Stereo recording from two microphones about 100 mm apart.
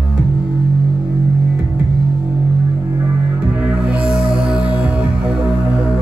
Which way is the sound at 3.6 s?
10° right (ahead or behind).